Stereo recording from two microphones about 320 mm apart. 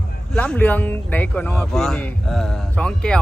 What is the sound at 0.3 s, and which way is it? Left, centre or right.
Speech, centre.